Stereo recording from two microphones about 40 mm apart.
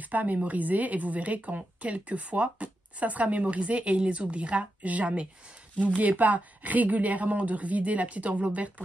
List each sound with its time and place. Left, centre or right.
0.0 s a woman's voice: right